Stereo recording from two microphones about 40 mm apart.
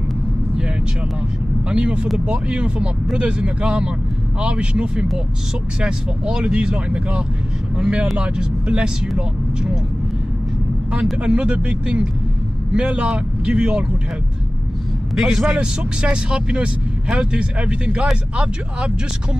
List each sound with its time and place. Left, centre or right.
1.7 s speech: right
11.1 s speech: right
15.1 s speech: centre